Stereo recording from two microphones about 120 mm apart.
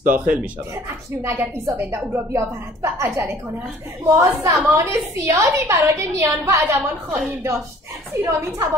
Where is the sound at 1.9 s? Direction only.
20° right (ahead or behind).